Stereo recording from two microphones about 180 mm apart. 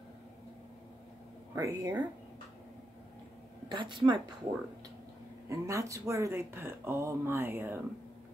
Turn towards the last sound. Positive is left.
turn(degrees=-15)  # may be behind; listen again after turning